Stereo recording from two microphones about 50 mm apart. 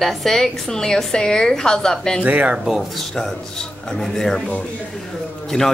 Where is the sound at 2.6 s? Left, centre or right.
Centre.